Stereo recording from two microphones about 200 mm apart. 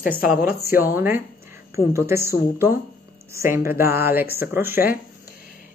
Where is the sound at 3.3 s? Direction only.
15° right (ahead or behind).